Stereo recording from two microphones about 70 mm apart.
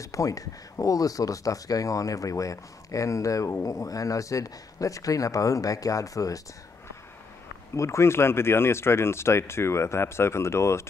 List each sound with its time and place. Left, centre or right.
0.0 s speech: left
7.7 s speech: left